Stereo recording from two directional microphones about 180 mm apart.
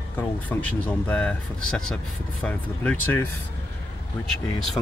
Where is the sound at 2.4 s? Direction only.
10° left (ahead or behind).